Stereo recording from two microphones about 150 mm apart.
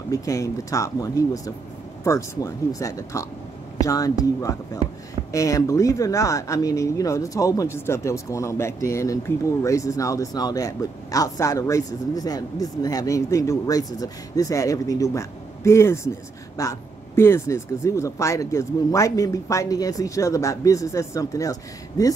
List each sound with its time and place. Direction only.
0.1 s speech: 20° left (ahead or behind)